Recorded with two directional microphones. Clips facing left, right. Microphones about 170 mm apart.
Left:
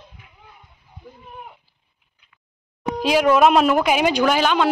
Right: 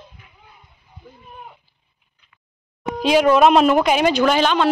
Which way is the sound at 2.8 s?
5° left (ahead or behind).